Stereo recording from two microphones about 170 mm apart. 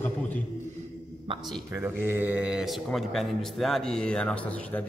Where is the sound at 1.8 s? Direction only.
10° right (ahead or behind).